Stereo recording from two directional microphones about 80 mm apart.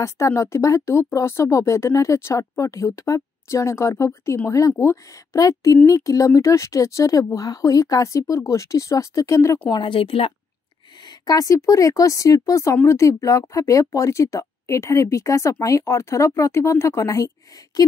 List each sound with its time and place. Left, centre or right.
0.0 s speech: left
9.7 s speech: left
11.1 s speech: left